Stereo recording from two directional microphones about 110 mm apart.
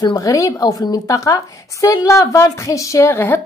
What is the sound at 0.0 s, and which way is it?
Speech, 35° left (ahead or behind).